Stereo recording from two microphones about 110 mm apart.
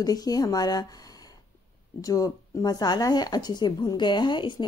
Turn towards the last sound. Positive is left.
turn(degrees=45)  # may be behind; listen again after turning